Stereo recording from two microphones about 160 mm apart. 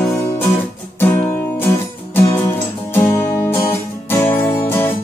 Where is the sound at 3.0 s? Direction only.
15° left (ahead or behind).